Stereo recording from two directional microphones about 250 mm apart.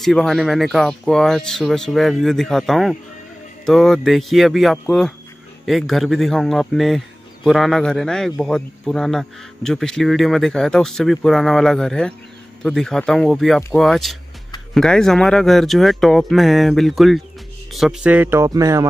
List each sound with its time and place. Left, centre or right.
0.0 s a man's voice: centre